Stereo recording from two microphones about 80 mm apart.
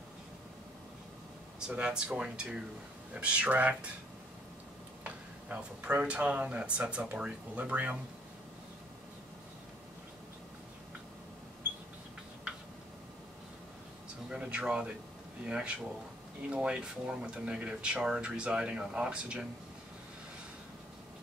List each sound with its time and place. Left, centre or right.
1.7 s speech: centre
5.0 s speech: centre
14.3 s speech: centre